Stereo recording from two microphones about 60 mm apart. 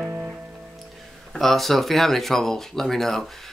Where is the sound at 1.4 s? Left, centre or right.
Centre.